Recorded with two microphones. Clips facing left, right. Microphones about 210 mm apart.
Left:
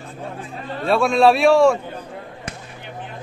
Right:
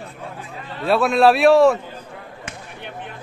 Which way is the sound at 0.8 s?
Centre (ahead or behind).